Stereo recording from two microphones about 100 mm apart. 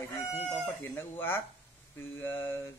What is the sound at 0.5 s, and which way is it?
Speech, 20° left (ahead or behind).